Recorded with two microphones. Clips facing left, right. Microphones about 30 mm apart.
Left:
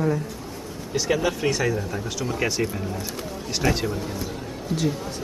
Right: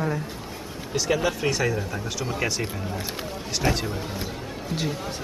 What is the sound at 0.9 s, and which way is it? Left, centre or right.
Speech, centre.